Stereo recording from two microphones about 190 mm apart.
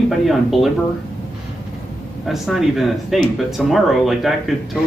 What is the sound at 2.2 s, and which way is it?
Speech, centre (ahead or behind).